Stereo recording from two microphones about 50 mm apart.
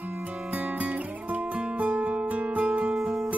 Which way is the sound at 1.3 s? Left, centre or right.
Right.